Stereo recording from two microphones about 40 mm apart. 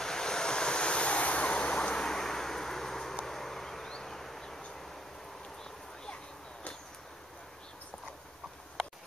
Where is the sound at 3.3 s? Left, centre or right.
Centre.